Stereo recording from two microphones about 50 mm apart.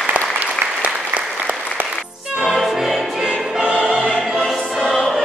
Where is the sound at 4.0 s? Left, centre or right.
Left.